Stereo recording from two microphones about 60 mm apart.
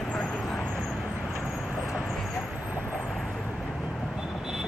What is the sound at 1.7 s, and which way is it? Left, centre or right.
Vehicle, centre.